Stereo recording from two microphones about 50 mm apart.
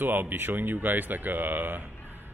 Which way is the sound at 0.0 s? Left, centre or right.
Right.